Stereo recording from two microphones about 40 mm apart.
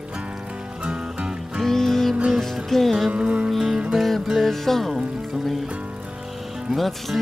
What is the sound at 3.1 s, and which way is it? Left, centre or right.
Music, right.